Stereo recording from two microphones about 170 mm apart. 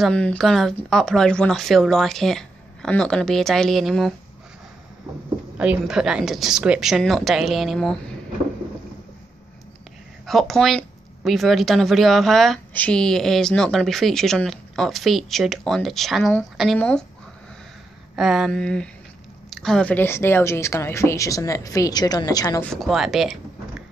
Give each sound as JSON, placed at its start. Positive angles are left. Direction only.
{"t": 0.0, "sound": "a woman's voice", "side_deg": 5}
{"t": 5.6, "sound": "a woman's voice", "side_deg": -5}
{"t": 10.2, "sound": "a woman's voice", "side_deg": 0}
{"t": 18.1, "sound": "a woman's voice", "side_deg": -5}
{"t": 22.6, "sound": "a woman's voice", "side_deg": 0}